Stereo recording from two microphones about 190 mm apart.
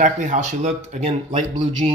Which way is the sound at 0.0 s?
40° right (ahead or behind).